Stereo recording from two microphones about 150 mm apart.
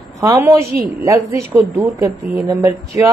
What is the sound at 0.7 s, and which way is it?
Speech, 70° right (ahead or behind).